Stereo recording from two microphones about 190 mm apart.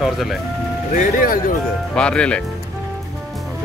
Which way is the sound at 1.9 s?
5° left (ahead or behind).